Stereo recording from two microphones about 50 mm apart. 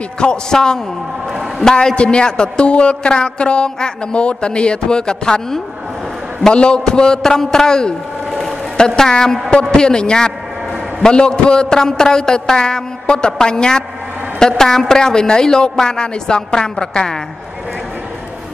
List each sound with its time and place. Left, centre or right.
0.2 s a man's voice: centre